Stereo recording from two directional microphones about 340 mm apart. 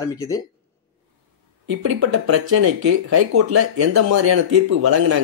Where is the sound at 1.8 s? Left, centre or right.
Right.